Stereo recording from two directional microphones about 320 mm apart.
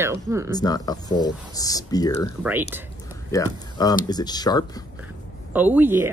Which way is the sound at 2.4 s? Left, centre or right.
Centre.